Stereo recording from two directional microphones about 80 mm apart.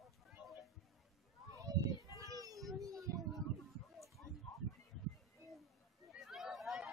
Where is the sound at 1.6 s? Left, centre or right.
Right.